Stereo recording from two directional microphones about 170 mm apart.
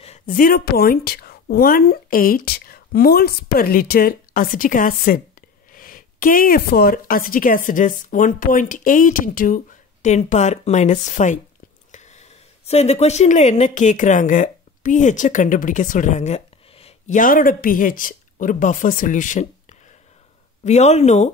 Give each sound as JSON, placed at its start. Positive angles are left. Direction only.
{"t": 0.3, "sound": "a woman's voice", "side_deg": 55}
{"t": 10.0, "sound": "a woman's voice", "side_deg": 45}
{"t": 11.9, "sound": "a sound", "side_deg": 45}
{"t": 12.6, "sound": "speech", "side_deg": 40}
{"t": 17.2, "sound": "a woman's voice", "side_deg": 55}
{"t": 20.6, "sound": "speech", "side_deg": 40}